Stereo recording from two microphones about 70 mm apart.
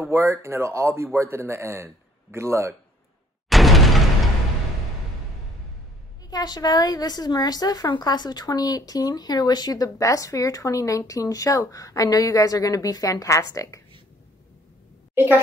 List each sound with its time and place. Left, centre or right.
0.0 s a man's voice: right
3.4 s a sound: centre
6.3 s a woman's voice: left
15.1 s a woman's voice: right